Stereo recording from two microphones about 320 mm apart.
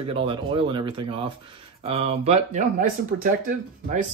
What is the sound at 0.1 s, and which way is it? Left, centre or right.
Speech, centre.